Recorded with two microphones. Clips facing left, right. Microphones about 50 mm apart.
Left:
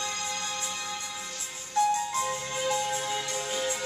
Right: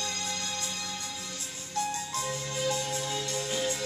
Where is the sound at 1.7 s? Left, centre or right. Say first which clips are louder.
Left 7 dB; left.